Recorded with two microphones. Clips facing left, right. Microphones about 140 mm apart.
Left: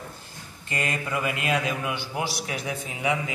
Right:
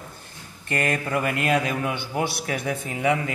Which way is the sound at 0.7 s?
55° right (ahead or behind).